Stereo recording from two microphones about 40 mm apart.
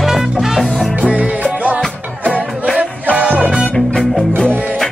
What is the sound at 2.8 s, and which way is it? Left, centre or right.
Music, right.